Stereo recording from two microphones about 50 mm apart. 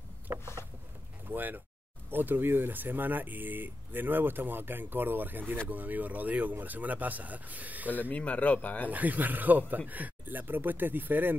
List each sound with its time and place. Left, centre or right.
0.3 s a sound: right
1.3 s speech: right
7.9 s speech: left
8.9 s speech: right